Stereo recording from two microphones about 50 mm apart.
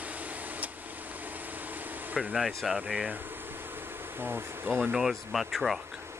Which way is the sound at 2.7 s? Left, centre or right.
Right.